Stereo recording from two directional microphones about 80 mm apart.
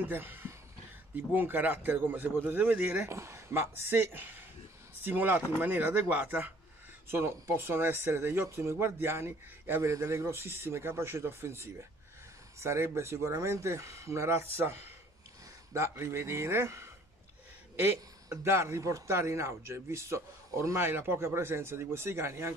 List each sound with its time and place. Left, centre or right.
0.0 s speech: right
3.1 s speech: right
9.8 s a man's voice: right
18.3 s a man's voice: right